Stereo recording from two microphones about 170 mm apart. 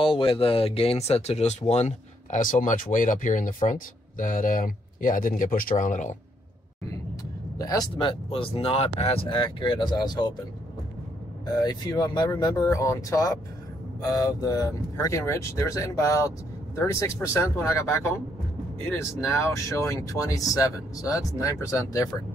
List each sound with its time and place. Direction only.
0.0 s speech: 30° left (ahead or behind); by 6.1 s 45° left (ahead or behind)
7.5 s speech: 20° left (ahead or behind)
11.4 s speech: 25° left (ahead or behind)